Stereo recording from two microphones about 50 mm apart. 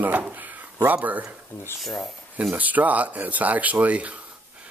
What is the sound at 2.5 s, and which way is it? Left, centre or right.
Speech, right.